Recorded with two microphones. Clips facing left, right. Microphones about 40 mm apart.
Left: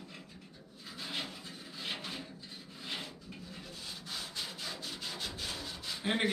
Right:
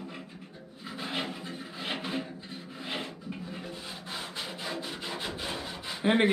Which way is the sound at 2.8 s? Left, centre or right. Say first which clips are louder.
Right 6 dB; right.